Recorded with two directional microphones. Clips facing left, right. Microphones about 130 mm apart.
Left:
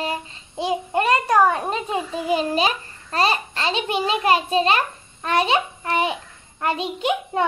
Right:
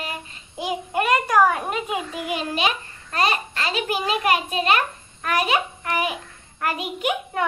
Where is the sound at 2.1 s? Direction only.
30° left (ahead or behind).